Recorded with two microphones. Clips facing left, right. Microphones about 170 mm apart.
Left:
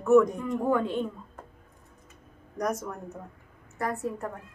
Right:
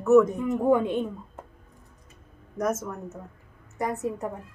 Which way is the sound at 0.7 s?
20° right (ahead or behind).